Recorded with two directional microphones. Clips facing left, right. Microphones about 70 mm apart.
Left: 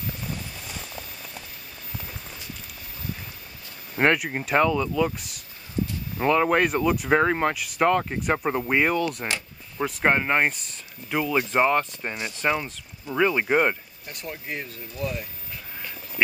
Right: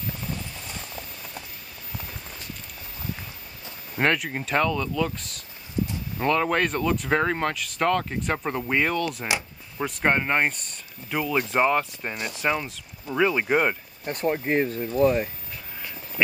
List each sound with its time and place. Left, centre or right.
4.0 s speech: centre
14.0 s speech: right